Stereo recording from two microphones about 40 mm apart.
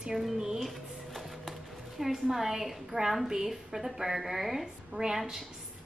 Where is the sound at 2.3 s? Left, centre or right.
Centre.